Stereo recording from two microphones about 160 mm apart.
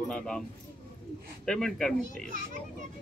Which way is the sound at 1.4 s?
5° left (ahead or behind).